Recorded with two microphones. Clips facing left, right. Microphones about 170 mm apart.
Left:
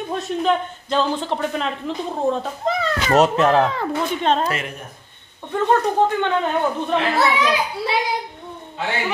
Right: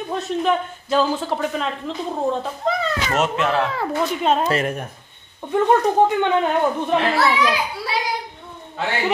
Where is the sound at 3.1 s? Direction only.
40° left (ahead or behind).